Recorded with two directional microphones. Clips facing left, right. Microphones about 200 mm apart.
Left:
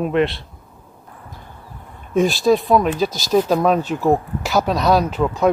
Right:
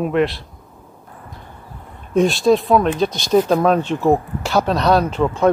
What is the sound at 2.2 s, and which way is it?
Speech, centre (ahead or behind).